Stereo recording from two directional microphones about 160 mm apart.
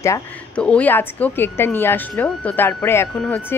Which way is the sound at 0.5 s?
5° left (ahead or behind).